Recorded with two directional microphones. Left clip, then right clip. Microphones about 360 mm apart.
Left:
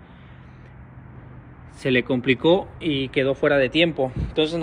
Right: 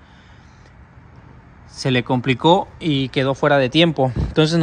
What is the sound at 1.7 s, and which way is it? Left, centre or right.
Speech, centre.